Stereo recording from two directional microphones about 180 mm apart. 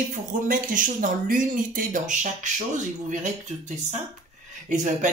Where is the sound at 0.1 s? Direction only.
45° right (ahead or behind).